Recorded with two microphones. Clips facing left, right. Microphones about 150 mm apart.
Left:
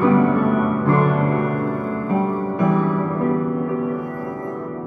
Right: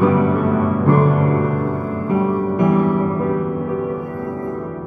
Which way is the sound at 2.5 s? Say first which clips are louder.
Right 3 dB; 15° right (ahead or behind).